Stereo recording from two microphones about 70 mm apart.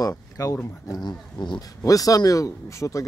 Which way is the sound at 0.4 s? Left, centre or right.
Left.